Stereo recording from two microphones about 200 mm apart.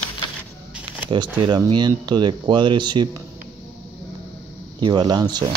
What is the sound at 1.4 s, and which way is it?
Speech, 20° right (ahead or behind).